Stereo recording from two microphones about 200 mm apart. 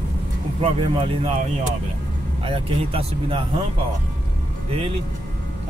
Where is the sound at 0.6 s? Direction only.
25° right (ahead or behind).